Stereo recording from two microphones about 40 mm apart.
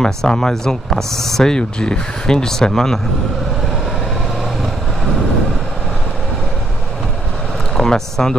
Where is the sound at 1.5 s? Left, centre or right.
Left.